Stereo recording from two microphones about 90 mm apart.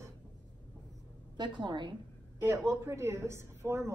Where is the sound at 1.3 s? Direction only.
60° right (ahead or behind).